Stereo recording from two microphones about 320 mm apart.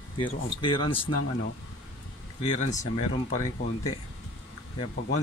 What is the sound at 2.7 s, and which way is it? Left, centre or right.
Speech, left.